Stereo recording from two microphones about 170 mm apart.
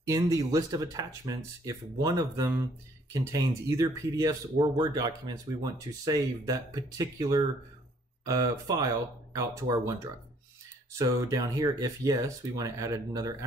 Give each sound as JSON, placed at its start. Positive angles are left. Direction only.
{"t": 0.0, "sound": "speech", "side_deg": -20}